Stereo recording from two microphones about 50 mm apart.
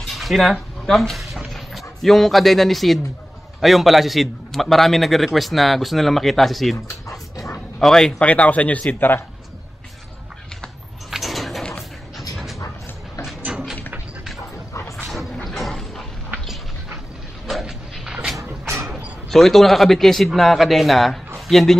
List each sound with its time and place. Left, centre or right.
0.1 s a man's voice: centre
6.9 s dog: left
7.8 s speech: centre
8.2 s speech: left
11.1 s a sound: centre
12.2 s dog: centre
13.4 s a sound: right
14.7 s dog: left
15.0 s mechanisms: centre
17.6 s a sound: centre
19.3 s a man's voice: centre